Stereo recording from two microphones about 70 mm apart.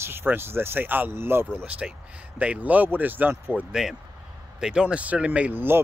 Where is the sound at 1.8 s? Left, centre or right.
Centre.